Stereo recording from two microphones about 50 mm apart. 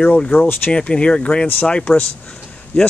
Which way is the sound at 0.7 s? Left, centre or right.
Left.